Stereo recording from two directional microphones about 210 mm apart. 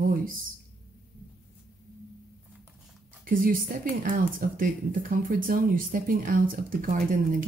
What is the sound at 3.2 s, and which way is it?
Speech, 40° right (ahead or behind).